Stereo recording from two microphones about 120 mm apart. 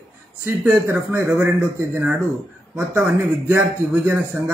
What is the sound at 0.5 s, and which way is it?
Speech, 20° right (ahead or behind).